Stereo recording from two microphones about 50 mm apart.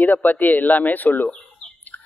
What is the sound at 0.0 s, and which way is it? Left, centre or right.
A man's voice, left.